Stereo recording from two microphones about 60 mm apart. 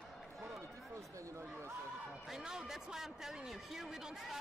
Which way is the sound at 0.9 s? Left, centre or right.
Right.